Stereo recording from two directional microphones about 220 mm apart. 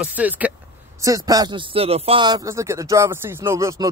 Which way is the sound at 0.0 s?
5° right (ahead or behind).